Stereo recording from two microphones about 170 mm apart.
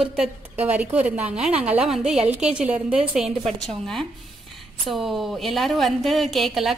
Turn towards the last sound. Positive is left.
turn(degrees=0)  # may be behind; listen again after turning